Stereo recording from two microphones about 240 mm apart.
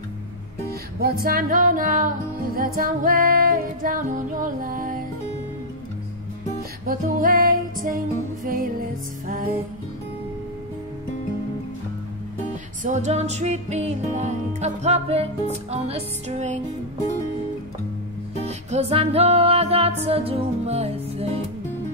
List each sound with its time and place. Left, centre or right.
1.0 s music: right
6.9 s music: right
9.3 s music: right
12.8 s music: right
18.4 s music: right